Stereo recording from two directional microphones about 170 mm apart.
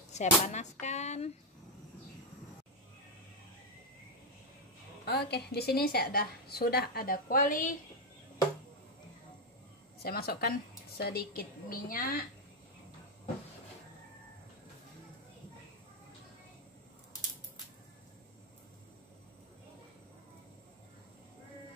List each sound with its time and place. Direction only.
0.1 s a sound: 45° left (ahead or behind)
5.0 s a woman's voice: 70° left (ahead or behind); by 7.7 s 50° left (ahead or behind)
10.0 s a woman's voice: 65° left (ahead or behind)